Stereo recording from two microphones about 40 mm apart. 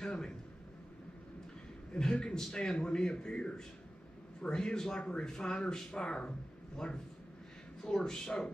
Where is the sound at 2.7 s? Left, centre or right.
Left.